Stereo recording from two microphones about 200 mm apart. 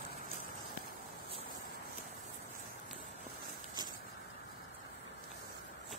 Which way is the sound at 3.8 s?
20° right (ahead or behind).